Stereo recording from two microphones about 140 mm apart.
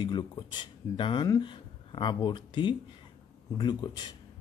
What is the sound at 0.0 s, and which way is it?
Speech, 30° left (ahead or behind).